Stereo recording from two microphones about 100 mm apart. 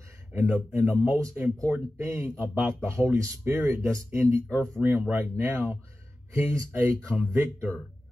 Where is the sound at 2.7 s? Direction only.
25° right (ahead or behind).